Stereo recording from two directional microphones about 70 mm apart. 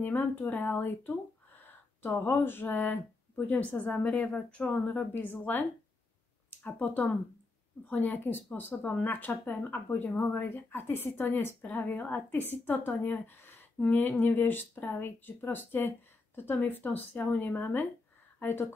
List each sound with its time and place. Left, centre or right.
0.0 s a woman's voice: left
4.8 s a woman's voice: left